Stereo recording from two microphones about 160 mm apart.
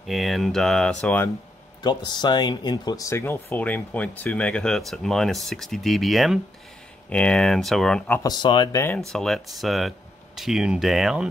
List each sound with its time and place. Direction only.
0.0 s speech: centre (ahead or behind)
1.8 s speech: 25° left (ahead or behind); by 8.2 s 5° left (ahead or behind)
8.2 s speech: 25° left (ahead or behind)
8.7 s speech: 15° left (ahead or behind)
9.1 s speech: centre (ahead or behind)